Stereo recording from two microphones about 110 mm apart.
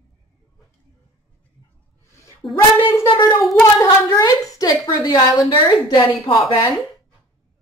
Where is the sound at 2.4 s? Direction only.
5° left (ahead or behind).